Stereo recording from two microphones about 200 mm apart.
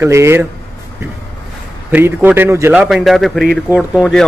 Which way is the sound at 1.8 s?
10° right (ahead or behind).